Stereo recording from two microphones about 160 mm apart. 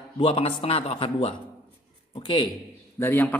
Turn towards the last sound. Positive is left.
turn(degrees=10)  # may be behind; listen again after turning